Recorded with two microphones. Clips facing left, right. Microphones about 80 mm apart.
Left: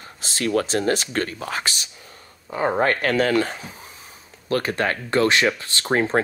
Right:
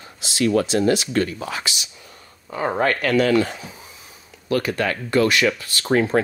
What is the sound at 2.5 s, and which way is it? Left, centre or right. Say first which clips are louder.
Speech: even; left.